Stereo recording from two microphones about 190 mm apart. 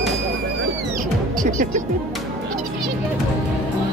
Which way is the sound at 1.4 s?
40° right (ahead or behind).